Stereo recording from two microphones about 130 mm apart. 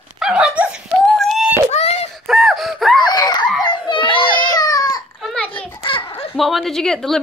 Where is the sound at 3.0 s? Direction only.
30° left (ahead or behind).